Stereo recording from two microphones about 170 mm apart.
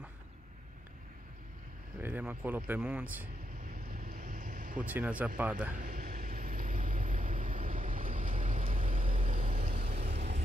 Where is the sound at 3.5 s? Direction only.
60° right (ahead or behind).